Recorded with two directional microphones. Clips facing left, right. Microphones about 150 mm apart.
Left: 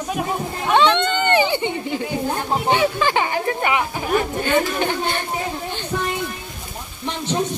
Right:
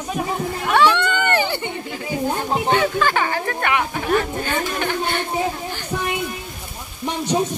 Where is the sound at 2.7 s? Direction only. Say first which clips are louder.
Left 1 dB; 15° left (ahead or behind).